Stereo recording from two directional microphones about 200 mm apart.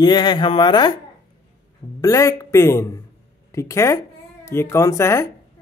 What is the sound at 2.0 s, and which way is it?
Speech, 15° left (ahead or behind).